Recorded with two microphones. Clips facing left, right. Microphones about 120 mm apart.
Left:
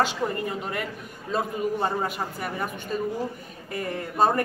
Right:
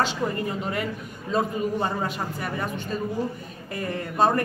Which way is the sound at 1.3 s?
5° left (ahead or behind).